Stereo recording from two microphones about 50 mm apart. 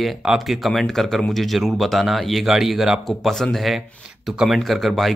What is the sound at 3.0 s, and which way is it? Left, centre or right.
Speech, centre.